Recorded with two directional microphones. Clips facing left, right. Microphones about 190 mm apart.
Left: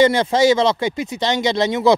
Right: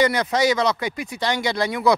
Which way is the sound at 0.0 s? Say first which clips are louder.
Left 5 dB; 25° left (ahead or behind).